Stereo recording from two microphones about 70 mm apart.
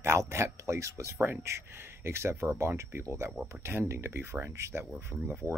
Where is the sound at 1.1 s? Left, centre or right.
Right.